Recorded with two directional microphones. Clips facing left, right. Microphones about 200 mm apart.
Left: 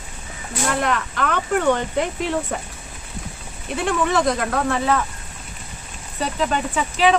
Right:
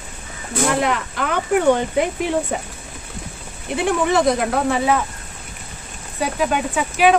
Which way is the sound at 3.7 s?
15° right (ahead or behind).